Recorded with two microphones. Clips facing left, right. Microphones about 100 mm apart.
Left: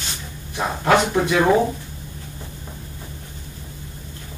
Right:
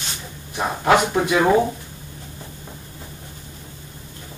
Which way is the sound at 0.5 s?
15° right (ahead or behind).